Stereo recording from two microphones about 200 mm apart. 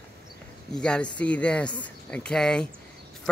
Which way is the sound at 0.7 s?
5° left (ahead or behind).